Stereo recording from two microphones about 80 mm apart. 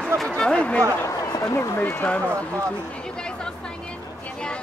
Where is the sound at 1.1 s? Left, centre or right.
Left.